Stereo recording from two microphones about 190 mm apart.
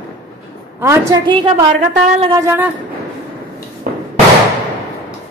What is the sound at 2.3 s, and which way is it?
Speech, 15° right (ahead or behind).